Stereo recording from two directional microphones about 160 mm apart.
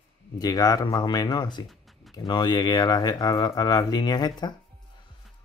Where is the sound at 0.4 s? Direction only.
25° left (ahead or behind).